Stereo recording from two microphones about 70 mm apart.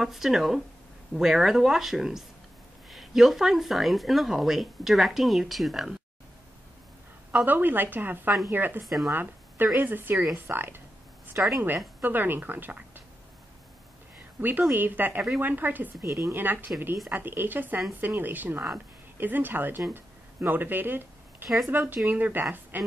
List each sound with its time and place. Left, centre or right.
0.0 s speech: centre
7.4 s a woman's voice: right
8.8 s speech: centre
9.1 s a woman's voice: right
10.1 s speech: centre
10.5 s a woman's voice: right
14.7 s a woman's voice: right
16.1 s speech: right
16.3 s a woman's voice: right
19.9 s a sound: right
21.6 s a woman's voice: right